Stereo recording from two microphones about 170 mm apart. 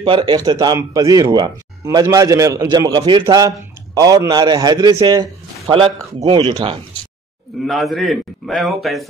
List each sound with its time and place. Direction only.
0.0 s a man's voice: 25° right (ahead or behind)
7.6 s a man's voice: centre (ahead or behind)